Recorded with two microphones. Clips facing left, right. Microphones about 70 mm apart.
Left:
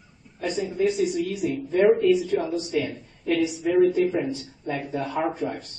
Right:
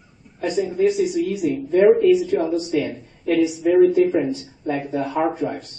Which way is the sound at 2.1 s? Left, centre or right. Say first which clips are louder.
Right 5 dB; centre.